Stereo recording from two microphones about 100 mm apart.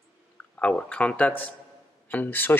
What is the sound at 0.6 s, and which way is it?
A man's voice, 15° left (ahead or behind).